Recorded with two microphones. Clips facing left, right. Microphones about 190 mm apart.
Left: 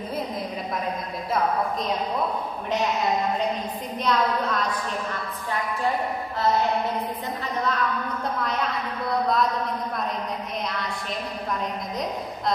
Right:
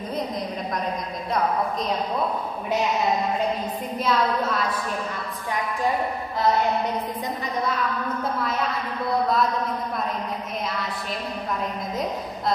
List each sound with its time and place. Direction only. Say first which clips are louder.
4.0 s a woman's voice: right 1 dB; 5° right (ahead or behind)